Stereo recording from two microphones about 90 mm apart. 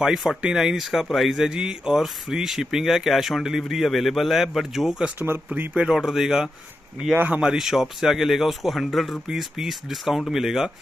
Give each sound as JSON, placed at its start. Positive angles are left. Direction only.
{"t": 0.0, "sound": "speech", "side_deg": -5}
{"t": 5.5, "sound": "speech", "side_deg": -15}